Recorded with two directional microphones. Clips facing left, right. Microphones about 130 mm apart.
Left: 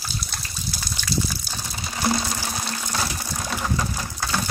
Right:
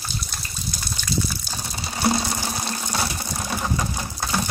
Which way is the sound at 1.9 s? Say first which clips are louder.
Right 2 dB; 25° right (ahead or behind).